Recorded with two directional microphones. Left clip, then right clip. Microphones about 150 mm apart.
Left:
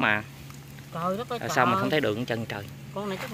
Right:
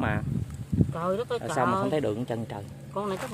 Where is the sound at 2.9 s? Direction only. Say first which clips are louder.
Right 2 dB; 55° right (ahead or behind).